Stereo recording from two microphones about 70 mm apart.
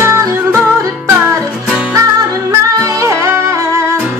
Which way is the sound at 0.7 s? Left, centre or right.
Right.